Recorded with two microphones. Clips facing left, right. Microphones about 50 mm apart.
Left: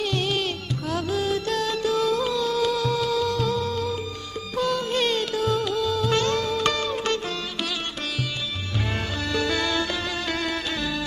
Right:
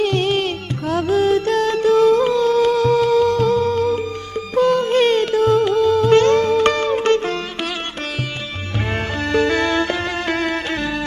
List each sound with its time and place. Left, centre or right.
0.0 s music: right
9.2 s music: right